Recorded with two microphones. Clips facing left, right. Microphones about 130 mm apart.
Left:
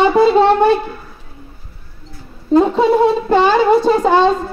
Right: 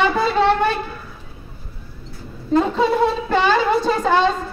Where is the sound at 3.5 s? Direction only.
20° left (ahead or behind).